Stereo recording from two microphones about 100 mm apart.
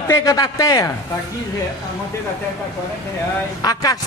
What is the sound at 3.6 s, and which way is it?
Speech, 40° left (ahead or behind).